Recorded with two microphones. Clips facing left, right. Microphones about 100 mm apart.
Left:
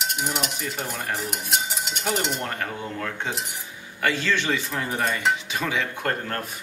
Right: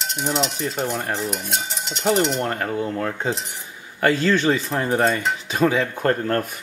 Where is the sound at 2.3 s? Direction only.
30° right (ahead or behind).